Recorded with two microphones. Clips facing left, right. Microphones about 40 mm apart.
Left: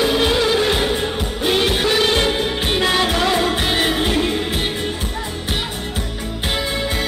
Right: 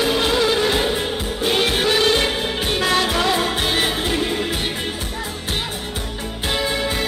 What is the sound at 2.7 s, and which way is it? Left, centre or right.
Music, centre.